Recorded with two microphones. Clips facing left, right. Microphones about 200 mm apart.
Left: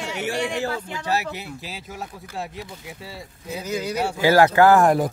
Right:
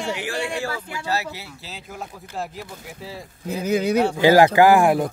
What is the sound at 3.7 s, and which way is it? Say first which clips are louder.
Speech: right 7 dB; 60° right (ahead or behind).